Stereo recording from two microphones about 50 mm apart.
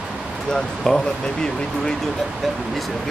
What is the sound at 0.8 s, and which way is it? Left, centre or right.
Speech, centre.